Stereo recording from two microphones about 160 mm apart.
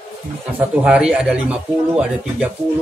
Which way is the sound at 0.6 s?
5° right (ahead or behind).